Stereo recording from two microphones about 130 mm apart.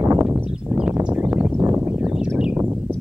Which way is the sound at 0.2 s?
15° right (ahead or behind).